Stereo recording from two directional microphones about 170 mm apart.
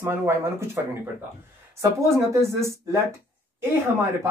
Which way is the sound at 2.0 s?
15° right (ahead or behind).